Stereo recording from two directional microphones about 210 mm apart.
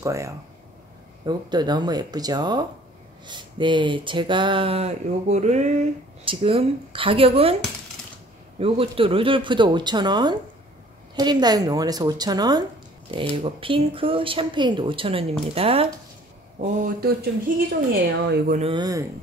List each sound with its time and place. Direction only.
0.0 s speech: 15° right (ahead or behind)
8.5 s speech: 25° right (ahead or behind); by 18.6 s 50° right (ahead or behind)
18.6 s speech: 20° right (ahead or behind)